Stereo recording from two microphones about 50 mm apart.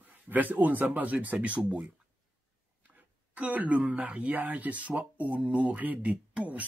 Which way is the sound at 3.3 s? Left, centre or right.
Right.